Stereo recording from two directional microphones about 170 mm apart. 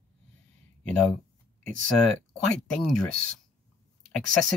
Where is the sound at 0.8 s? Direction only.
5° left (ahead or behind).